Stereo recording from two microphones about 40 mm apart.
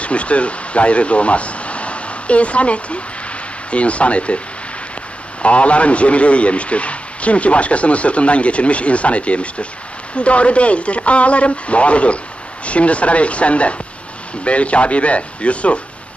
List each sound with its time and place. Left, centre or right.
0.0 s a man's voice: left
5.4 s a man's voice: left